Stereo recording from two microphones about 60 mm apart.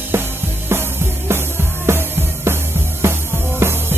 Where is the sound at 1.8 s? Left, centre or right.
Right.